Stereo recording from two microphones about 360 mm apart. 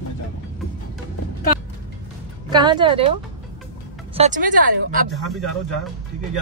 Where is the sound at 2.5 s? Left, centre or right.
Centre.